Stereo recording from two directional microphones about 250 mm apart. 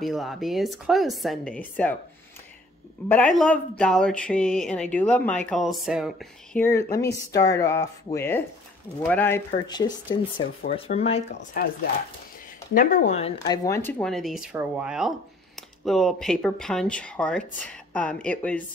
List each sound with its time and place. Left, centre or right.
0.0 s speech: centre
3.1 s speech: centre; by 11.6 s left
12.7 s speech: left
13.5 s speech: centre